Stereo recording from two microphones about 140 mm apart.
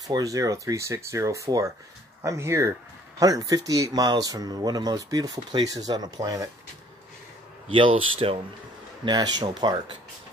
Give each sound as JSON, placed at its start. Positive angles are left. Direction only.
{"t": 0.1, "sound": "speech", "side_deg": -25}
{"t": 7.7, "sound": "speech", "side_deg": -40}
{"t": 9.0, "sound": "speech", "side_deg": -30}